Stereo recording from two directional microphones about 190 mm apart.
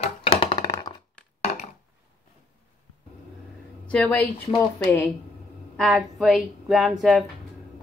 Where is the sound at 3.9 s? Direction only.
5° left (ahead or behind).